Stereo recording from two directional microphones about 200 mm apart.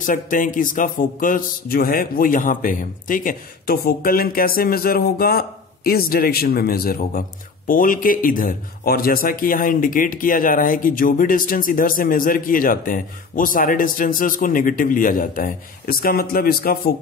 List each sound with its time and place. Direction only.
0.0 s a man's voice: 40° left (ahead or behind)